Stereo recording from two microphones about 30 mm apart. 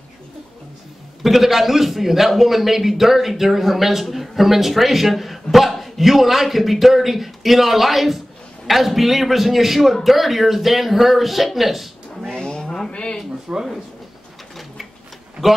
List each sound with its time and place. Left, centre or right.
1.2 s a man's voice: centre
12.4 s vehicle: left
12.9 s a sound: left
13.5 s speech: right